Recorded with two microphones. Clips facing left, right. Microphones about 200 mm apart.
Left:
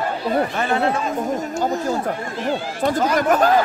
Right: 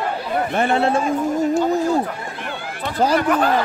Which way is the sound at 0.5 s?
30° right (ahead or behind).